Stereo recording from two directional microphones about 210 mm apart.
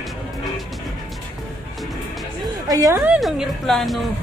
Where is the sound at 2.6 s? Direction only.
15° right (ahead or behind).